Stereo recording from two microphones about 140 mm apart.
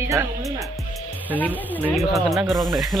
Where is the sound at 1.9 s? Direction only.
Centre (ahead or behind).